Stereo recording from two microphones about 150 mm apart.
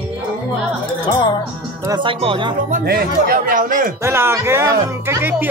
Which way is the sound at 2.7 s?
80° right.